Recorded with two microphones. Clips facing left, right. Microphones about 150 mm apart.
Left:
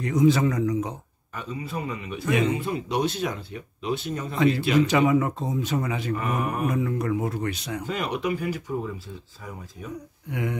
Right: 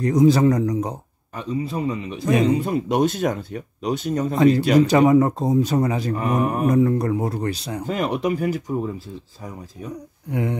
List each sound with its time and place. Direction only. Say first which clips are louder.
0.0 s a man's voice: right 5 dB; 35° right (ahead or behind)
10.3 s a man's voice: right 5 dB; 30° right (ahead or behind)